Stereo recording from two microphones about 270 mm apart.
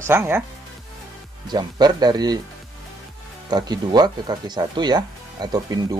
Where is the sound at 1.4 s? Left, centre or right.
Centre.